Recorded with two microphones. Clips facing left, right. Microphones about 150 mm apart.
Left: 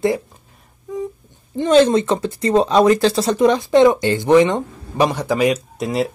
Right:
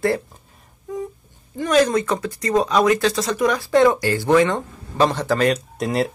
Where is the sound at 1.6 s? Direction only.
25° left (ahead or behind).